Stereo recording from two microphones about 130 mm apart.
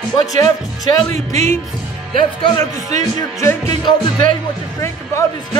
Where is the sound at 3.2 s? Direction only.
25° left (ahead or behind).